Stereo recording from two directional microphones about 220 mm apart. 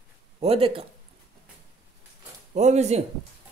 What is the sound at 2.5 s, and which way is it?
Speech, 30° right (ahead or behind).